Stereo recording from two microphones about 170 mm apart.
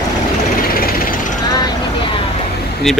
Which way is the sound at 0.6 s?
60° left (ahead or behind).